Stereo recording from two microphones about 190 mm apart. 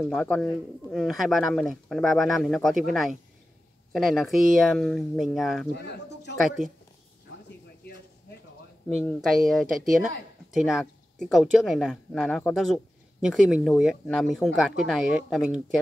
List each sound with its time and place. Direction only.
0.0 s speech: centre (ahead or behind)
5.8 s speech: 60° left (ahead or behind)
8.8 s speech: 5° left (ahead or behind)